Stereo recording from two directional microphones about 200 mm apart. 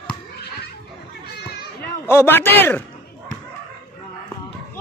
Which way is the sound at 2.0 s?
10° left (ahead or behind).